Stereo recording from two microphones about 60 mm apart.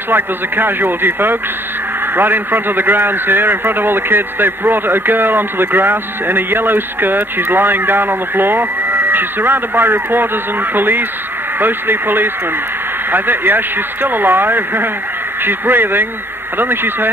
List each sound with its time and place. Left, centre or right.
0.1 s a man's voice: right